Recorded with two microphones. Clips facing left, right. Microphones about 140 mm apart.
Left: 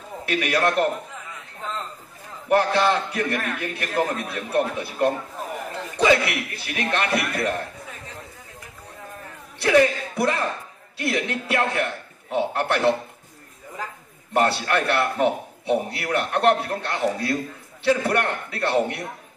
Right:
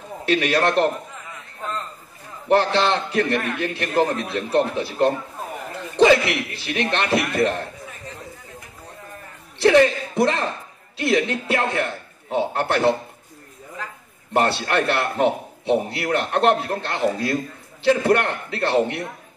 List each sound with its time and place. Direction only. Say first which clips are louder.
0.2 s a man's voice: right 3 dB; 25° right (ahead or behind)
2.4 s a man's voice: right 1 dB; 25° right (ahead or behind)
5.9 s a man's voice: right 4 dB; 25° right (ahead or behind)
9.6 s a man's voice: right 3 dB; 25° right (ahead or behind)
14.3 s a man's voice: right 1 dB; 25° right (ahead or behind)